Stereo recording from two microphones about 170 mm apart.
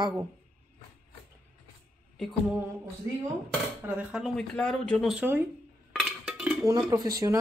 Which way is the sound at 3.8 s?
5° right (ahead or behind).